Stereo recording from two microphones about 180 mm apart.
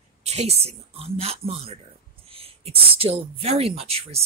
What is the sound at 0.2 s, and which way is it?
Speech, 35° right (ahead or behind).